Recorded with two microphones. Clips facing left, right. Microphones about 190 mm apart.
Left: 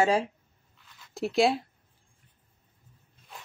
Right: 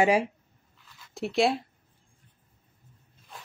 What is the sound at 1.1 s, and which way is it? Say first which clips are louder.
Speech: left 1 dB; centre (ahead or behind).